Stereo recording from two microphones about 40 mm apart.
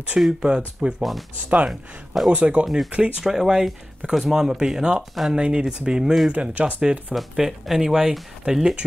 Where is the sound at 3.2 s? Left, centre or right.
Centre.